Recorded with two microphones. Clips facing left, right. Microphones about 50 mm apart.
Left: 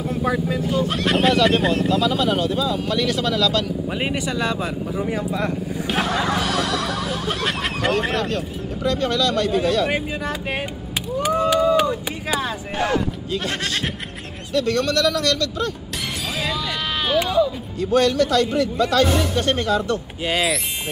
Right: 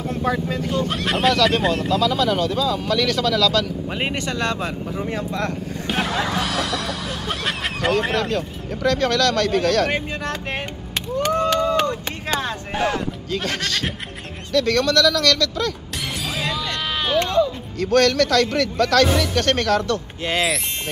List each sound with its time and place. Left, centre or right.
0.0 s speech: centre
2.0 s speech: centre
3.8 s speech: centre
4.1 s speech: centre
5.9 s a sound: centre
8.8 s speech: right
9.8 s speech: centre
11.1 s a sound: centre
14.8 s speech: left
16.4 s a sound: centre
17.9 s speech: right
20.2 s speech: centre